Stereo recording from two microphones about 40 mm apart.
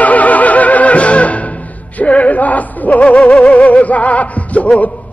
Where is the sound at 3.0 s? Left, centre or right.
Left.